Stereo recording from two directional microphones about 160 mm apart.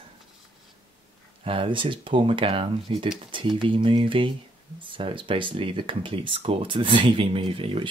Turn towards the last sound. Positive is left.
turn(degrees=-35)  # may be behind; listen again after turning